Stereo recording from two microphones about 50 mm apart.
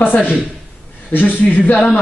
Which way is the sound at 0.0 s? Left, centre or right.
Left.